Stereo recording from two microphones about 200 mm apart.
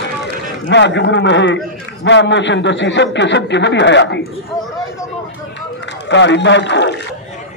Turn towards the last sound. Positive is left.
turn(degrees=60)  # may be behind; listen again after turning